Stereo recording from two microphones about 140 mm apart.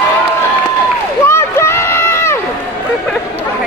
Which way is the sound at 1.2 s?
20° left (ahead or behind).